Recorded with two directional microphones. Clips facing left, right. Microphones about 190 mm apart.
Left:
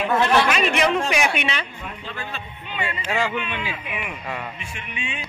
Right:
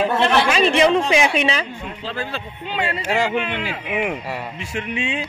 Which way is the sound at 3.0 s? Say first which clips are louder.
Right 3 dB; 35° right (ahead or behind).